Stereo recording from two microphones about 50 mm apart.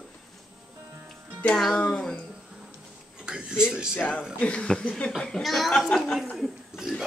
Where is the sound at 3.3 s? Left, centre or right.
Centre.